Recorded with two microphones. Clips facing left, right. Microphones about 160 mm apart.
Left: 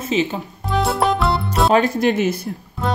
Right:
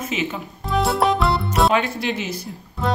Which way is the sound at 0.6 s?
Centre (ahead or behind).